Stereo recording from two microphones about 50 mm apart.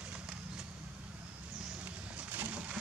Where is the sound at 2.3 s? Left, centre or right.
Right.